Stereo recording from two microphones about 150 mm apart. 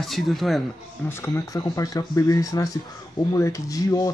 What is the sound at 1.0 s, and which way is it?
Speech, 15° left (ahead or behind).